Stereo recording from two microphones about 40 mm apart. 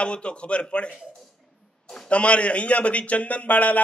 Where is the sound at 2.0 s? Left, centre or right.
Left.